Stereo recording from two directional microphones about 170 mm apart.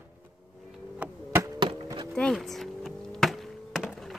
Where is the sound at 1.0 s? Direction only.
10° right (ahead or behind).